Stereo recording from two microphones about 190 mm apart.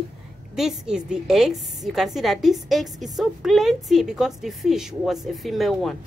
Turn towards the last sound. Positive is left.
turn(degrees=0)  # may be behind; listen again after turning